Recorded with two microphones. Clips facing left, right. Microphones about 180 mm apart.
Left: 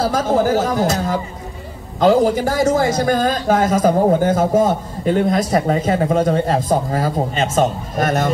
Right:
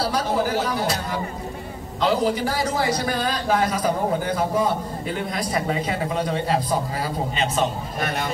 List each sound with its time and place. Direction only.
0.0 s a man's voice: 45° left (ahead or behind)